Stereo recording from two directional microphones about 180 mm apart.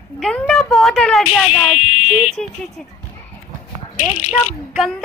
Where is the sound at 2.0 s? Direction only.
40° left (ahead or behind).